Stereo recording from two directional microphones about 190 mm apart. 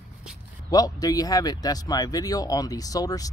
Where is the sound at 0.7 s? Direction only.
20° left (ahead or behind).